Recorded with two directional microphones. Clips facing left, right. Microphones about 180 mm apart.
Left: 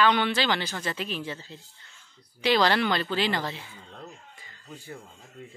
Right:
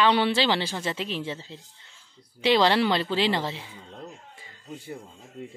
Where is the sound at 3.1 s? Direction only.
25° right (ahead or behind).